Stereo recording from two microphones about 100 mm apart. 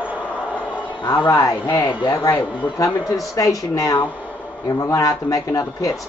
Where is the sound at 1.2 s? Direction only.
35° left (ahead or behind).